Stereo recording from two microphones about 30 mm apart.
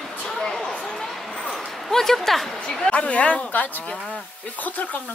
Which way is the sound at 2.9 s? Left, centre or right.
Left.